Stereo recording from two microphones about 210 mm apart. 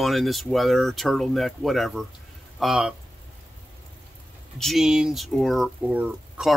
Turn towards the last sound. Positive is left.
turn(degrees=-5)  # may be behind; listen again after turning